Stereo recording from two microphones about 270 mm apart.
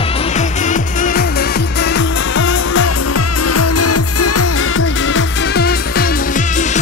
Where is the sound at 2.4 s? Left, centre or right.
Left.